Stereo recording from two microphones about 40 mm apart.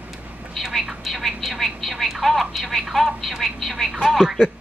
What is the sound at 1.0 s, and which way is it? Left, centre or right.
Speech, centre.